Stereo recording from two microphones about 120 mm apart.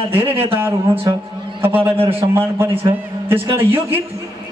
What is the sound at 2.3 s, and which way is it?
A man's voice, 20° right (ahead or behind).